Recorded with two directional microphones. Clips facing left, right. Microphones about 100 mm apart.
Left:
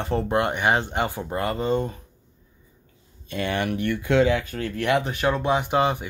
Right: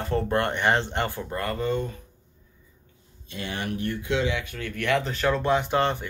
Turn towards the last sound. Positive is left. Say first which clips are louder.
# left 2 dB
turn(degrees=10)  # may be behind; listen again after turning